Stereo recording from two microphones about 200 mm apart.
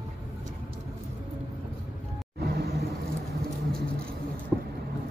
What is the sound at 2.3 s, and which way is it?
Vehicle, 55° right (ahead or behind).